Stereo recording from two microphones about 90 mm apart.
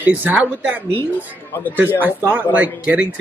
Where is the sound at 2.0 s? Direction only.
20° right (ahead or behind).